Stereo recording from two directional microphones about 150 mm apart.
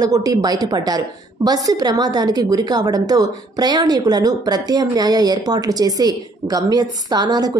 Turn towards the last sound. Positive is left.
turn(degrees=-25)  # may be behind; listen again after turning